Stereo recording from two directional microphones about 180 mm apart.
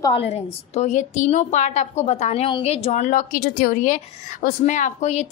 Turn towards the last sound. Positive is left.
turn(degrees=40)  # may be behind; listen again after turning